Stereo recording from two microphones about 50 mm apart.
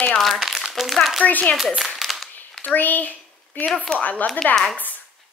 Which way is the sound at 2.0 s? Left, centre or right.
Centre.